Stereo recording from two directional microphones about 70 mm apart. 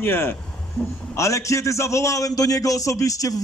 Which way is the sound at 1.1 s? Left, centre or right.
Left.